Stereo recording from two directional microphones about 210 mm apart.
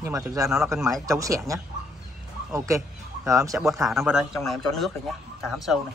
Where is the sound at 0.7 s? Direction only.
Centre (ahead or behind).